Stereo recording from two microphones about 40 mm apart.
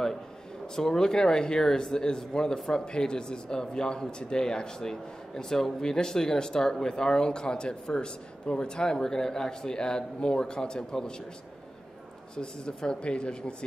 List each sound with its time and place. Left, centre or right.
0.7 s speech: centre
12.4 s speech: left